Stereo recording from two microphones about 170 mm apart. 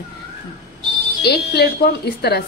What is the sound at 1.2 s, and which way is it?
A woman's voice, 70° left (ahead or behind).